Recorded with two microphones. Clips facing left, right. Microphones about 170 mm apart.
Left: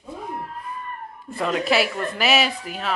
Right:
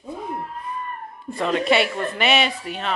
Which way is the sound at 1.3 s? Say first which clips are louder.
Right 2 dB; centre (ahead or behind).